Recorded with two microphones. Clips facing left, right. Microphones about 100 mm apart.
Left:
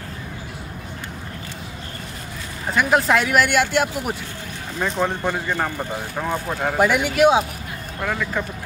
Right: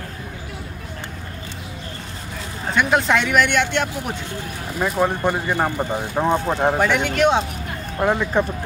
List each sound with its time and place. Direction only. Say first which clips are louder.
2.7 s speech: even; centre (ahead or behind)
4.7 s speech: right 2 dB; 10° right (ahead or behind); by 6.8 s 25° right (ahead or behind)
6.8 s speech: left 2 dB; 10° left (ahead or behind)
8.0 s speech: right 6 dB; 25° right (ahead or behind)